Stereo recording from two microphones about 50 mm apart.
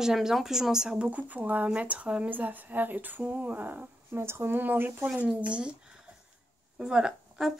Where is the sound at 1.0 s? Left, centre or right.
Right.